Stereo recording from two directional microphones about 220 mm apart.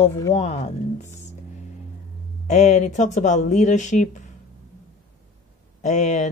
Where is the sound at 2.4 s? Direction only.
30° left (ahead or behind).